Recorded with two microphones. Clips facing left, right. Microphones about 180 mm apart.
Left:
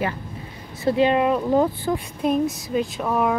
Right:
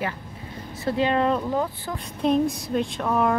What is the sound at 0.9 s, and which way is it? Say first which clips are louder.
Speech: left 3 dB; 15° left (ahead or behind).